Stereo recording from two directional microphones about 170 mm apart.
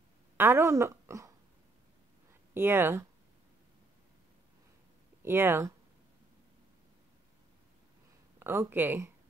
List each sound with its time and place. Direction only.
0.4 s speech: 15° right (ahead or behind)
2.5 s speech: 15° right (ahead or behind)
5.2 s speech: 15° right (ahead or behind)
8.4 s speech: 15° right (ahead or behind)